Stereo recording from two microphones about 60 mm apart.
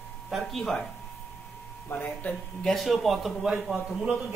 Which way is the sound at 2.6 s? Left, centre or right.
Centre.